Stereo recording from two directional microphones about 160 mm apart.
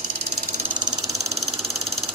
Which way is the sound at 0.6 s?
30° right (ahead or behind).